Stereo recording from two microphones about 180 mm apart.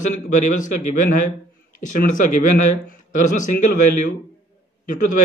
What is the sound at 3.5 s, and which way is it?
A man's voice, 45° left (ahead or behind).